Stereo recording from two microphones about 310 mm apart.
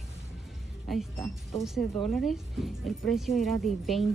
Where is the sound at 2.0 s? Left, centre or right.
Centre.